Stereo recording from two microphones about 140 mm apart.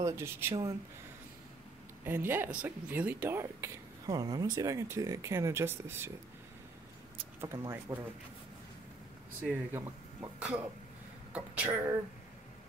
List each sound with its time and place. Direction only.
0.0 s speech: 20° right (ahead or behind)
2.0 s speech: 15° right (ahead or behind)
7.3 s speech: 20° right (ahead or behind)
9.4 s speech: 15° right (ahead or behind)